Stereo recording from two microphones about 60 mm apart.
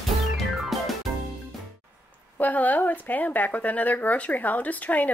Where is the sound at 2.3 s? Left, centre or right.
Left.